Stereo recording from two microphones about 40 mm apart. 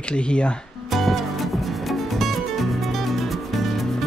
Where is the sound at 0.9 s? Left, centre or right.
Centre.